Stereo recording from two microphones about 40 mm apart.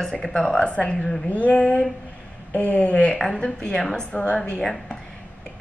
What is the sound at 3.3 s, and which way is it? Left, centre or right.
A woman's voice, left.